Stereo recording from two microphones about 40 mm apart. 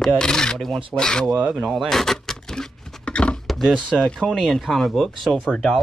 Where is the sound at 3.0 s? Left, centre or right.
Left.